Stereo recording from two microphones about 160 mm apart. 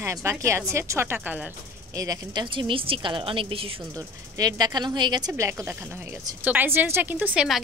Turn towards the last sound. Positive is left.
turn(degrees=-10)  # may be behind; listen again after turning